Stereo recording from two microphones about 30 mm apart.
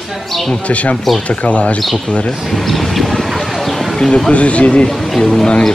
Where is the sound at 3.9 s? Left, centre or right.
Left.